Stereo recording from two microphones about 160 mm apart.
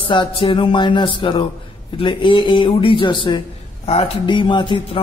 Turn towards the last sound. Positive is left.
turn(degrees=30)  # may be behind; listen again after turning